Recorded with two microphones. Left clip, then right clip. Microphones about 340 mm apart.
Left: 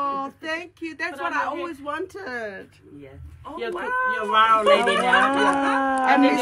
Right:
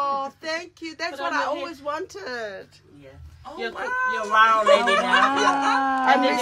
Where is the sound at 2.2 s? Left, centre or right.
Centre.